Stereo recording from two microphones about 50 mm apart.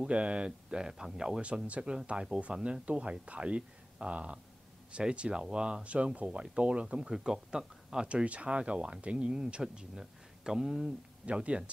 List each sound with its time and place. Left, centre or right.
0.0 s speech: right
7.1 s speech: centre
11.2 s speech: right